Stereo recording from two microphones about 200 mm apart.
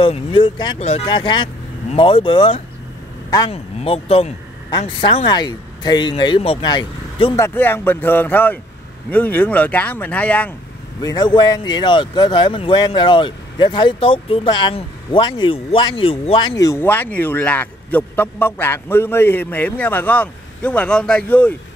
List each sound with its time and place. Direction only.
0.0 s speech: 25° left (ahead or behind)
7.3 s speech: 10° left (ahead or behind)
11.0 s speech: 20° left (ahead or behind)